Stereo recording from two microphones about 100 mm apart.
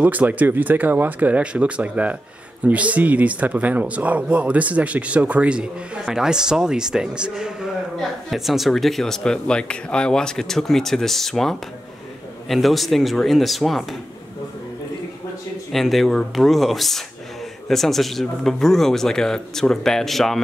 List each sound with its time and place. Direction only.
0.0 s speech: 15° right (ahead or behind); by 13.8 s centre (ahead or behind)
15.7 s speech: centre (ahead or behind)